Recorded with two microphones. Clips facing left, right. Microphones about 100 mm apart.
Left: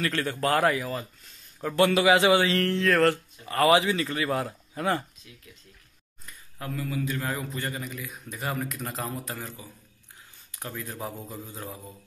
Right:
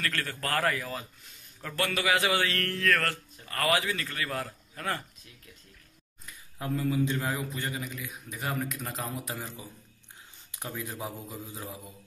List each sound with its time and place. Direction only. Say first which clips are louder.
0.0 s speech: left 7 dB; 20° left (ahead or behind)
6.6 s speech: right 3 dB; 25° right (ahead or behind)
7.2 s a man's voice: left 1 dB; centre (ahead or behind)
10.5 s speech: left 1 dB; 15° right (ahead or behind)